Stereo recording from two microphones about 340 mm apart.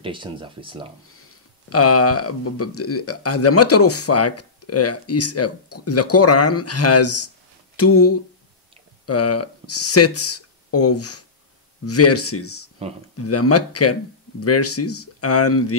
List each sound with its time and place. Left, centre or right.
0.0 s speech: centre
1.7 s speech: left